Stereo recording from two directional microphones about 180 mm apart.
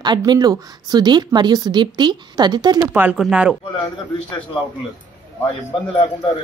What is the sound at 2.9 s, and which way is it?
Speech, 5° right (ahead or behind).